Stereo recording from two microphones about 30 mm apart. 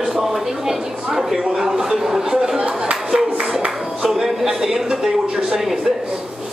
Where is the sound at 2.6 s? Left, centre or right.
Right.